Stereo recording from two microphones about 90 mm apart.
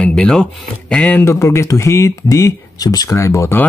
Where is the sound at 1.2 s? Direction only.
30° left (ahead or behind).